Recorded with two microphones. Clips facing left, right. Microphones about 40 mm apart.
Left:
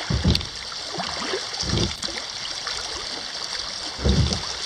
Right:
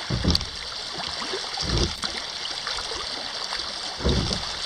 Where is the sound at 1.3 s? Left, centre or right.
Centre.